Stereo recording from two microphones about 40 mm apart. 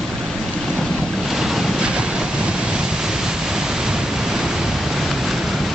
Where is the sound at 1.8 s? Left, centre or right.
Right.